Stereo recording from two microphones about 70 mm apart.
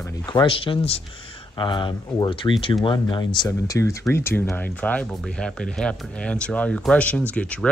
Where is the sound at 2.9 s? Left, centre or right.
Left.